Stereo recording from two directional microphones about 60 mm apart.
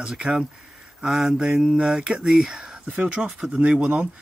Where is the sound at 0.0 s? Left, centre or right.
Centre.